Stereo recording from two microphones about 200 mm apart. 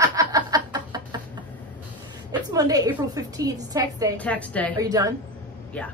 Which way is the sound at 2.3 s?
20° right (ahead or behind).